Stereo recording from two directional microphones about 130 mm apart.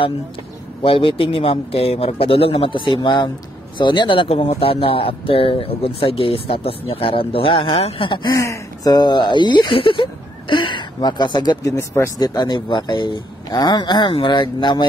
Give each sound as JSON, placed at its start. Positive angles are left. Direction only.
{"t": 0.8, "sound": "speech", "side_deg": 40}